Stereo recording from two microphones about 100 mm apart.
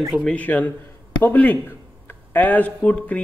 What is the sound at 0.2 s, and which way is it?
A man's voice, 10° left (ahead or behind).